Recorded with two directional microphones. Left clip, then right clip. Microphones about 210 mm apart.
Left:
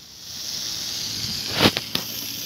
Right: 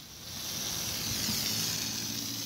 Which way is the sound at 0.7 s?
25° right (ahead or behind).